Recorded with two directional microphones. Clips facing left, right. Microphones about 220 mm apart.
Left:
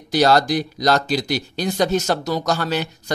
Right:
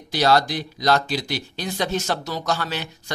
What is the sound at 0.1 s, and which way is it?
Speech, 45° left (ahead or behind).